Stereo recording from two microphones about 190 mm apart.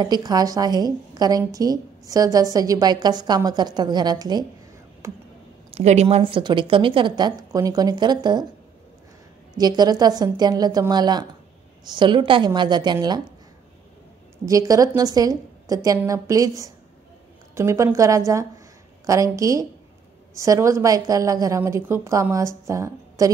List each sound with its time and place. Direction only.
0.0 s a woman's voice: 20° right (ahead or behind)
5.8 s a woman's voice: 35° right (ahead or behind)
9.6 s a woman's voice: 20° right (ahead or behind)
14.4 s a woman's voice: 15° right (ahead or behind)